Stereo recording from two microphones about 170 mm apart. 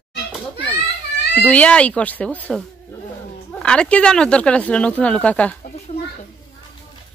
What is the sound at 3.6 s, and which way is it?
Speech, 5° left (ahead or behind).